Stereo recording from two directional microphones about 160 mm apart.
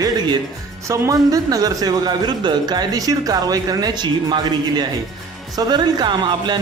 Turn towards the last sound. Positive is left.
turn(degrees=-30)  # may be behind; listen again after turning